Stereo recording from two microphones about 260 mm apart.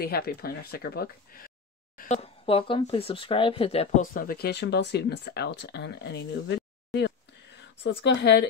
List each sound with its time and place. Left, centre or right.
0.0 s speech: left